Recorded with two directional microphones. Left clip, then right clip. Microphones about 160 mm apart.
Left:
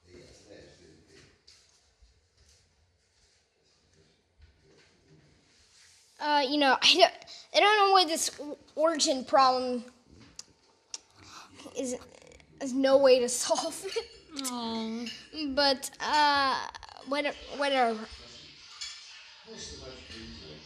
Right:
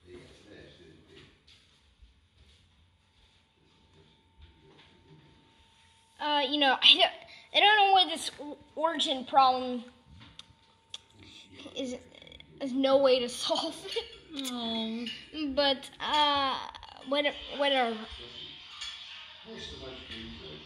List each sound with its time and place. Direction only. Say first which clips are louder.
6.1 s a woman's voice: left 2 dB; 55° left (ahead or behind)
7.2 s a woman's voice: even; 35° left (ahead or behind); by 8.2 s 55° left (ahead or behind)
8.5 s speech: left 3 dB; 45° left (ahead or behind)
10.9 s burping: left 1 dB; 35° left (ahead or behind)
14.3 s speech: even; centre (ahead or behind)
15.1 s speech: left 1 dB; 25° left (ahead or behind)